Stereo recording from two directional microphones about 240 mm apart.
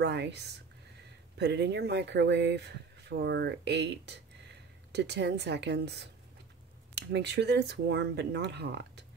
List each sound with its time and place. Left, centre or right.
0.0 s speech: right